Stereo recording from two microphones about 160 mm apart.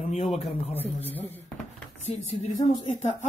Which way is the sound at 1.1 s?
15° left (ahead or behind).